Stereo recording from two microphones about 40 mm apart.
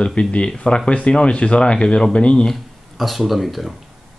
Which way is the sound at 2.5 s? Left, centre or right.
Centre.